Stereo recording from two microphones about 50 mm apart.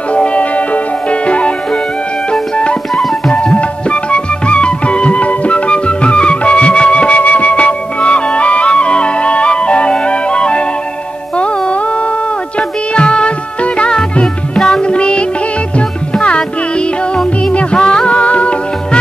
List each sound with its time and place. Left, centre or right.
0.1 s music: left